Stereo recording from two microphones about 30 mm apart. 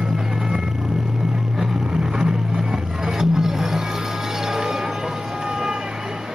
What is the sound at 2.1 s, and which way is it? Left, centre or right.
Music, right.